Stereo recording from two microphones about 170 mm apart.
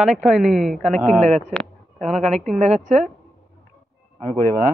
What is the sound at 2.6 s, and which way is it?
Speech, 40° right (ahead or behind).